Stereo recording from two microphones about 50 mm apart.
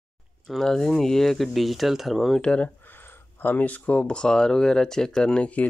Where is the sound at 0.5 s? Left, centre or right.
Centre.